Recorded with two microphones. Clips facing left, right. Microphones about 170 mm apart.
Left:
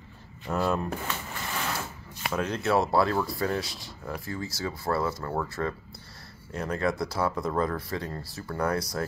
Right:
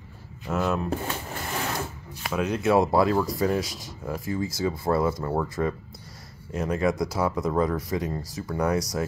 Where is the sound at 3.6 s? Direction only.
45° right (ahead or behind).